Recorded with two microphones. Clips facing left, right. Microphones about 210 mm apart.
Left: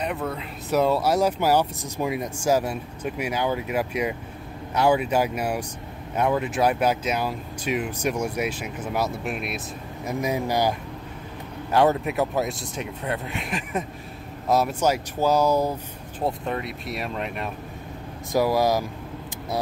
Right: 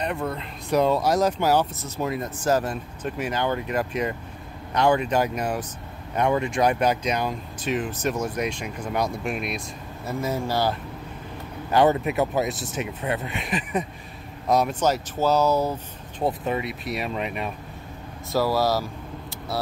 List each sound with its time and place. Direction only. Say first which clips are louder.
0.0 s speech: even; 5° left (ahead or behind)
10.0 s speech: left 1 dB; 15° left (ahead or behind)
11.7 s speech: right 1 dB; centre (ahead or behind)
16.3 s speech: right 2 dB; 5° right (ahead or behind)
18.3 s speech: left 1 dB; 15° left (ahead or behind)